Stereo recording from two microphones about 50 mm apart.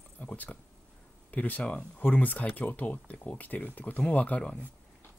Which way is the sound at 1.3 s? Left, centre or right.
Left.